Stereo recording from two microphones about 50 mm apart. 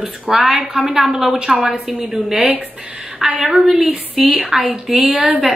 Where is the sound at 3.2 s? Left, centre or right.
Centre.